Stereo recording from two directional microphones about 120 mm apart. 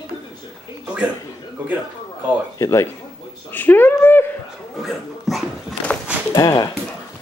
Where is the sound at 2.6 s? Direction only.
25° left (ahead or behind).